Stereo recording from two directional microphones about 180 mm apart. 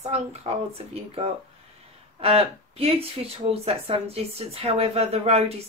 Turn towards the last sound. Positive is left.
turn(degrees=-35)  # may be behind; listen again after turning